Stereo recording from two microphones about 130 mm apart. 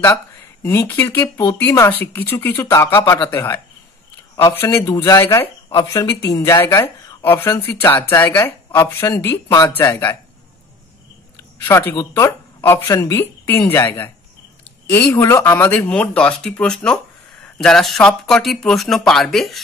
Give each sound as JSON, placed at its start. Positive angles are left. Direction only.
{"t": 0.0, "sound": "speech", "side_deg": 15}
{"t": 11.6, "sound": "speech", "side_deg": 20}